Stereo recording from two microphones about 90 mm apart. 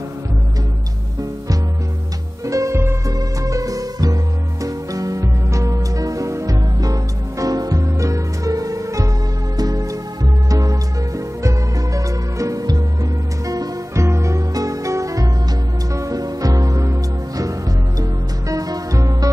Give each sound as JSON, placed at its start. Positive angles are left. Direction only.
{"t": 2.4, "sound": "music", "side_deg": -35}
{"t": 3.1, "sound": "music", "side_deg": -40}